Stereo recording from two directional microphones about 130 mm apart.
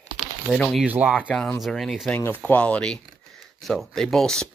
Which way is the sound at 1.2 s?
5° left (ahead or behind).